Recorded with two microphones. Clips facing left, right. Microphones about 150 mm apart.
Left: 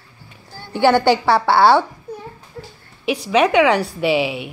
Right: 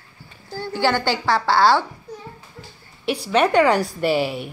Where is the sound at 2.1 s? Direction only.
55° left (ahead or behind).